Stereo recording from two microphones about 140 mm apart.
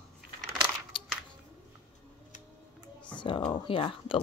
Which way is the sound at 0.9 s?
40° left (ahead or behind).